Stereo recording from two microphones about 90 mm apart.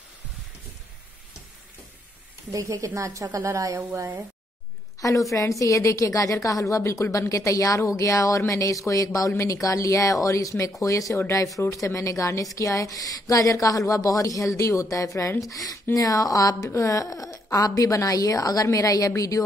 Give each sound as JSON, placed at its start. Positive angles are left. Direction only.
{"t": 2.5, "sound": "a woman's voice", "side_deg": -40}
{"t": 5.0, "sound": "speech", "side_deg": 40}